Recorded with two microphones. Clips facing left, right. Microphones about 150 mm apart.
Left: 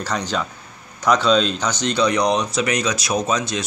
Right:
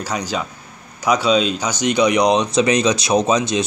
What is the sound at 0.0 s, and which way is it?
Speech, 10° right (ahead or behind).